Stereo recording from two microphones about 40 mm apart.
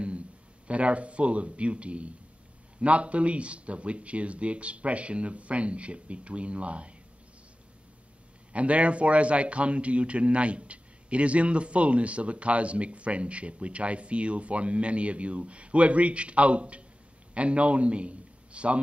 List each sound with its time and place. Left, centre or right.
0.7 s a man's voice: right
8.5 s a man's voice: right